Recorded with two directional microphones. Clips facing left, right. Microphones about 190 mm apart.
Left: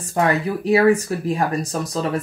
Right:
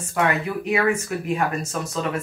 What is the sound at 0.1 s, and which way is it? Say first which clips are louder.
Speech: left 3 dB; 35° left (ahead or behind).